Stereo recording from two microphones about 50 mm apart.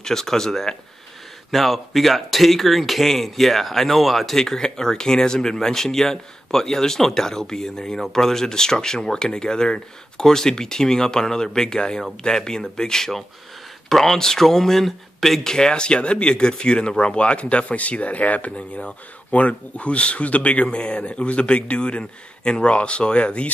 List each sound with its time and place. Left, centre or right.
0.0 s speech: centre
15.5 s speech: centre